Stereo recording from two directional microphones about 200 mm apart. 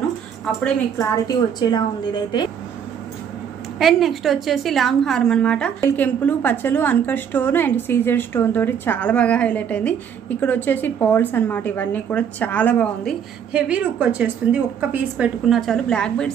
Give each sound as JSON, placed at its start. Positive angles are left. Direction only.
{"t": 0.9, "sound": "a woman's voice", "side_deg": 20}
{"t": 3.8, "sound": "a woman's voice", "side_deg": 0}
{"t": 13.5, "sound": "a woman's voice", "side_deg": -5}